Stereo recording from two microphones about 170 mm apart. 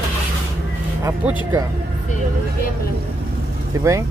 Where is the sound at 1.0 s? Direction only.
10° right (ahead or behind).